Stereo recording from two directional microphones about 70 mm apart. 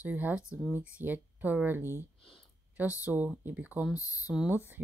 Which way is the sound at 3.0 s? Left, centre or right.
Right.